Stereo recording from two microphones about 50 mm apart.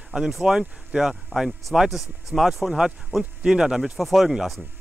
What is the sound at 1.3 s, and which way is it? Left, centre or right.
Speech, right.